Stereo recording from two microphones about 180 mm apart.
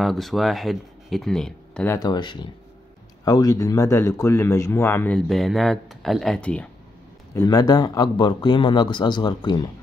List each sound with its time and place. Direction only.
0.0 s speech: centre (ahead or behind)
2.0 s a man's voice: 25° left (ahead or behind); by 6.7 s 5° left (ahead or behind)
7.3 s a man's voice: 20° left (ahead or behind)